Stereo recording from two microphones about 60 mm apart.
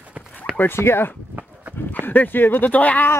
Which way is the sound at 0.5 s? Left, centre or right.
Left.